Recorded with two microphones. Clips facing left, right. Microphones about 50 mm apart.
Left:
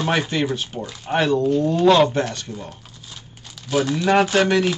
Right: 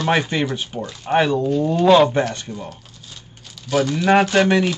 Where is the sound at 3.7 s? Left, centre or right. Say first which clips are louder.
Right 1 dB; centre.